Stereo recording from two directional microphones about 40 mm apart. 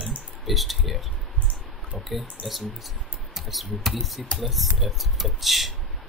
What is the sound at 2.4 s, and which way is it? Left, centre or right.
Speech, right.